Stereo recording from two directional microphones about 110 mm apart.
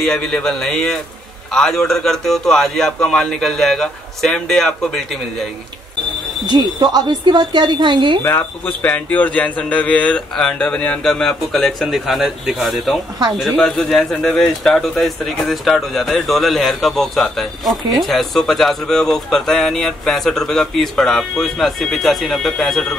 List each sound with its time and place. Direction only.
0.0 s a man's voice: 5° left (ahead or behind)
6.4 s a woman's voice: 40° right (ahead or behind)
8.2 s a man's voice: 15° left (ahead or behind)